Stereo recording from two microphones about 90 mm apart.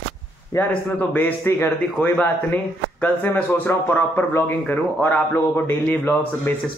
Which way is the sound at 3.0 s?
20° left (ahead or behind).